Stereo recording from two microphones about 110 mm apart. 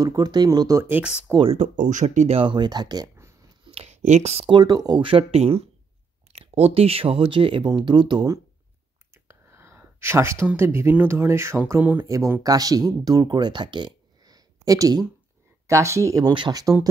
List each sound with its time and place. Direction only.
0.0 s speech: 35° right (ahead or behind)
0.8 s speech: 15° right (ahead or behind)
1.4 s speech: 80° right
2.4 s speech: 45° right (ahead or behind)
3.6 s a sound: 70° right (ahead or behind)
4.5 s speech: 40° right (ahead or behind)
5.0 s speech: 60° right (ahead or behind); by 8.3 s 45° right (ahead or behind)
9.1 s speech: 25° right (ahead or behind)
12.1 s speech: 30° right (ahead or behind)
16.3 s speech: 45° right (ahead or behind)